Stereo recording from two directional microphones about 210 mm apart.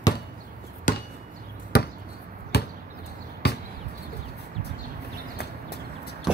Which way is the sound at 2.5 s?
50° left (ahead or behind).